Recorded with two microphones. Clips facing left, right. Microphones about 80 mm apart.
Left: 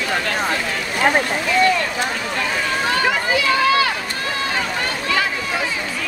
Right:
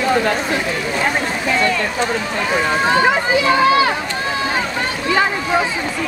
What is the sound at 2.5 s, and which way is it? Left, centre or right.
Speech, right.